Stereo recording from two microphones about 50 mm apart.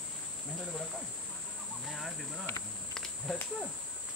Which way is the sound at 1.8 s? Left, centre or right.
Centre.